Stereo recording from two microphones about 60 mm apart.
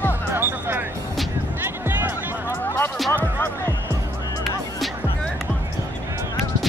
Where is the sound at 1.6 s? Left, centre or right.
Right.